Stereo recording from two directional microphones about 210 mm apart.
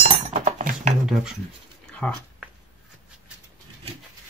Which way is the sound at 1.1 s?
Centre (ahead or behind).